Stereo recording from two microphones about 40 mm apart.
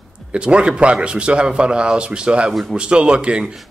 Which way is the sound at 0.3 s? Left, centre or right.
Right.